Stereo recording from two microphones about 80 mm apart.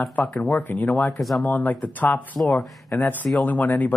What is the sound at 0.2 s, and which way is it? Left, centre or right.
Speech, centre.